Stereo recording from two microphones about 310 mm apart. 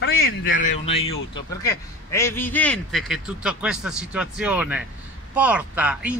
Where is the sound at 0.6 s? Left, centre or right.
Centre.